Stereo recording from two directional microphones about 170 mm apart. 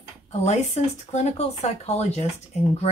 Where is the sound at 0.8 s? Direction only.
40° left (ahead or behind).